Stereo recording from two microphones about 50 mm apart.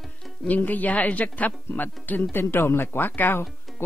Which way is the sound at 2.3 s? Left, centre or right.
Left.